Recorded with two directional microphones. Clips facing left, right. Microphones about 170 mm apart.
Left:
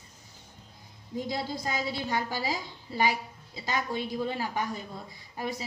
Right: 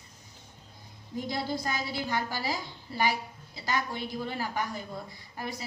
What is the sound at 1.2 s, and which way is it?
A woman's voice, 25° left (ahead or behind).